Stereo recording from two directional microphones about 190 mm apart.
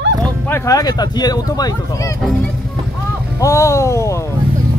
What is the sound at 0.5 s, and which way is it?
Speech, 15° left (ahead or behind).